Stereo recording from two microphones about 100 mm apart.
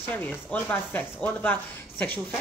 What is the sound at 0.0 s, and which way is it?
Speech, 20° left (ahead or behind).